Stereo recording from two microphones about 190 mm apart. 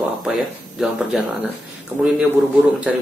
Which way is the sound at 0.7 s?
Centre (ahead or behind).